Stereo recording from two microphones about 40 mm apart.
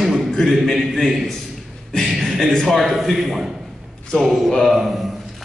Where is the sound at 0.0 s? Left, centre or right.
Centre.